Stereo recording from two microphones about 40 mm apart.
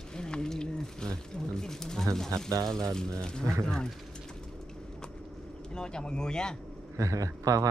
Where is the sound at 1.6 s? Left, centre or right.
Centre.